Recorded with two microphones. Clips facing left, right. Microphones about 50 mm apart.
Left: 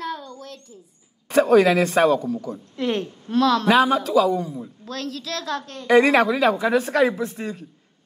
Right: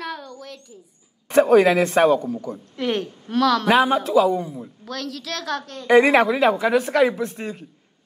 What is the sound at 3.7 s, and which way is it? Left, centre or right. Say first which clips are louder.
Speech: right 1 dB; right.